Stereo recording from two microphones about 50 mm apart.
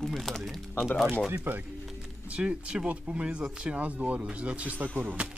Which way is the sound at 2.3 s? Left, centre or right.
Right.